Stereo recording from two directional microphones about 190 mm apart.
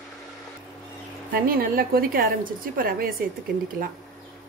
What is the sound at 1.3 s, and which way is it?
A woman's voice, 50° right (ahead or behind).